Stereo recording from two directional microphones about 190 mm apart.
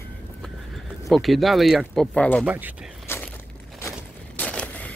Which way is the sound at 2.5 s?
10° right (ahead or behind).